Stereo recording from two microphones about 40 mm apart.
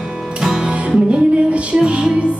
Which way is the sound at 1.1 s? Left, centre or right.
Right.